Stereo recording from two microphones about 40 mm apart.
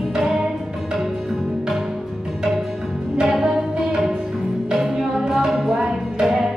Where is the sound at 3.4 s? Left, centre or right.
Centre.